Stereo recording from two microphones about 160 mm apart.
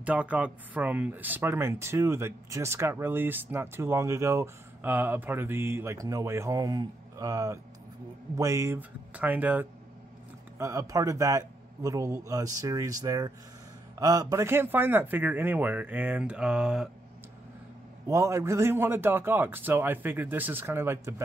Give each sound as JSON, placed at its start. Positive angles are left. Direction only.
{"t": 0.0, "sound": "speech", "side_deg": -10}
{"t": 18.0, "sound": "speech", "side_deg": -20}